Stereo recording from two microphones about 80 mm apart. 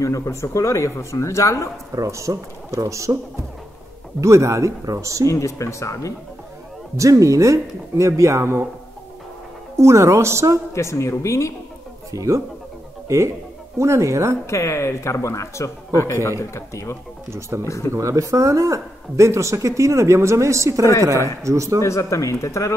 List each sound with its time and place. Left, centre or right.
0.0 s speech: left
2.0 s speech: right
4.2 s speech: right
5.3 s speech: left
7.0 s speech: right
9.8 s speech: right
10.7 s speech: left
12.1 s speech: right
14.4 s speech: left
17.3 s speech: right
17.6 s speech: left
17.9 s speech: right
21.8 s speech: left